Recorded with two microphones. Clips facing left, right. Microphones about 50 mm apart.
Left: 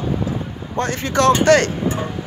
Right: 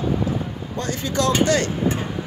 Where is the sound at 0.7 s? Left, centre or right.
Left.